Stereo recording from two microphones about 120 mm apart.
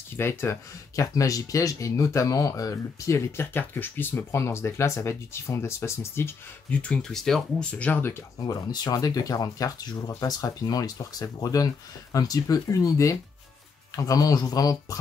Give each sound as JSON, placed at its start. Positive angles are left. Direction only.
{"t": 0.2, "sound": "speech", "side_deg": 20}
{"t": 8.4, "sound": "speech", "side_deg": 30}